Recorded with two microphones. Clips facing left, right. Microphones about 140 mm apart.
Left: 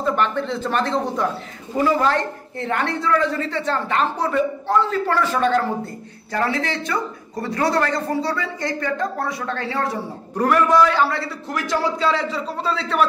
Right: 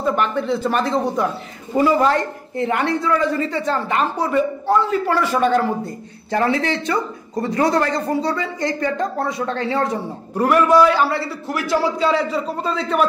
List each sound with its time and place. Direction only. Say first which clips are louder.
0.0 s a woman's voice: right 1 dB; 10° right (ahead or behind)
10.3 s a woman's voice: right 2 dB; 5° right (ahead or behind)